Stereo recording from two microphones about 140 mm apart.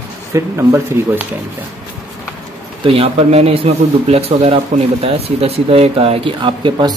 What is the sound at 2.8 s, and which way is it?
Speech, 45° right (ahead or behind).